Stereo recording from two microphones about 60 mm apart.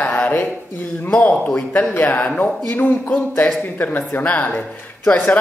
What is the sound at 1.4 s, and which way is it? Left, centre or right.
Speech, left.